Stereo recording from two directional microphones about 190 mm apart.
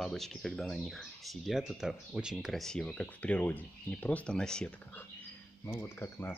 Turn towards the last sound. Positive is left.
turn(degrees=15)  # may be behind; listen again after turning